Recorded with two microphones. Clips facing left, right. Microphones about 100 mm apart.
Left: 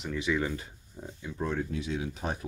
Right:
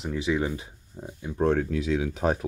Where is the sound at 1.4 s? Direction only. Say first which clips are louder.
Right 8 dB; 85° right.